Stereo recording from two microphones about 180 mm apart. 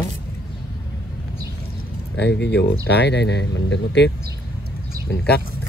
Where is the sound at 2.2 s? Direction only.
70° left (ahead or behind); by 4.1 s 90° left.